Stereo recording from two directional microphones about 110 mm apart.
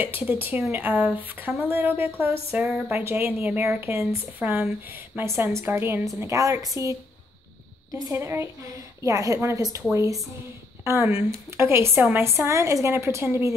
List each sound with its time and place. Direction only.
0.0 s a woman's voice: 15° right (ahead or behind)